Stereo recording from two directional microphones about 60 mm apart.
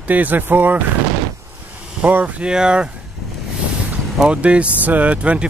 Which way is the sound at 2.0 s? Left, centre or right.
Right.